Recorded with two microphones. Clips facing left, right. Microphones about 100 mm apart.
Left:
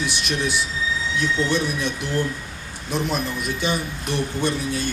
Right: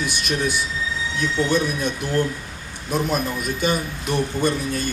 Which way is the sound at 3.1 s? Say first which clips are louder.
Right 2 dB; 45° right (ahead or behind).